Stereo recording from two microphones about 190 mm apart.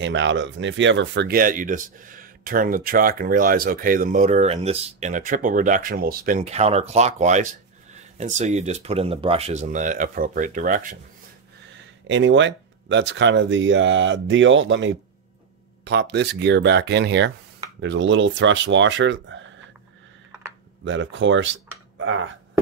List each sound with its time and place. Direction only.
0.0 s speech: 75° right (ahead or behind); by 11.0 s 45° right (ahead or behind)
12.1 s speech: 75° right (ahead or behind)
15.8 s speech: 65° right (ahead or behind)
20.8 s speech: 80° right